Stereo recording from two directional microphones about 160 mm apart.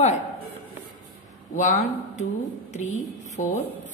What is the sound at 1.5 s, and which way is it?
Speech, 50° left (ahead or behind).